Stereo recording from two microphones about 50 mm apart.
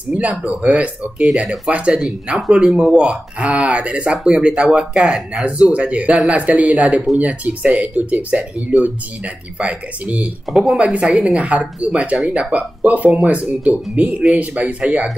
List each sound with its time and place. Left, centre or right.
0.1 s speech: right
10.5 s speech: centre
10.8 s speech: right